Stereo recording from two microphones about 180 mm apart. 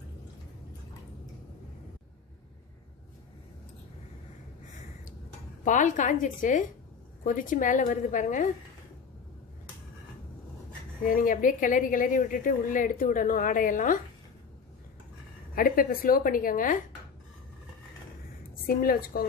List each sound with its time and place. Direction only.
5.6 s speech: 45° left (ahead or behind)
11.1 s speech: 50° left (ahead or behind)
15.5 s speech: 55° left (ahead or behind)
18.7 s a woman's voice: 55° left (ahead or behind)